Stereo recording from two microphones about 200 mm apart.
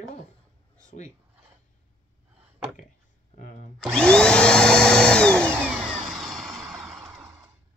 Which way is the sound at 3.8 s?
5° left (ahead or behind).